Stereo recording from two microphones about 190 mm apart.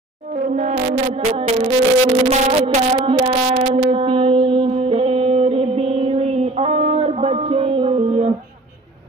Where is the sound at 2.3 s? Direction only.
30° right (ahead or behind).